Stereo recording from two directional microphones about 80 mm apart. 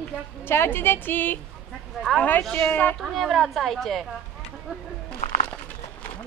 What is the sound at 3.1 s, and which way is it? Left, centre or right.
Speech, centre.